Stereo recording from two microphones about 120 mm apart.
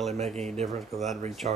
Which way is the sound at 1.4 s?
90° right.